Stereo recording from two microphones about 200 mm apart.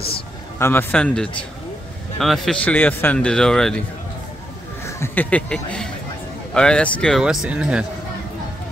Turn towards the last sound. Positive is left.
turn(degrees=-5)  # may be behind; listen again after turning